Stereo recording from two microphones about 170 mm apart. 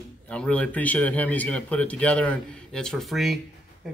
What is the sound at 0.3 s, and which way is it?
Speech, 5° left (ahead or behind).